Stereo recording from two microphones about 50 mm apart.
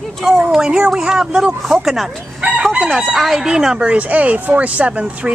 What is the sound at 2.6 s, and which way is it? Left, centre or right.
Chicken, centre.